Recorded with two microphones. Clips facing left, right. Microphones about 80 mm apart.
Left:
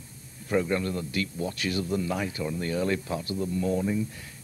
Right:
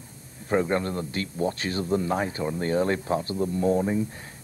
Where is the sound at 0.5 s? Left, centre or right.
Right.